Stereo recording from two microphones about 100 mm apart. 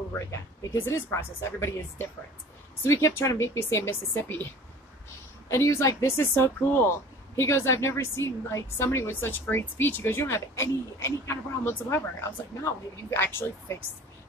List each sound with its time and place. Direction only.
0.6 s speech: 35° left (ahead or behind)
5.5 s speech: 30° left (ahead or behind)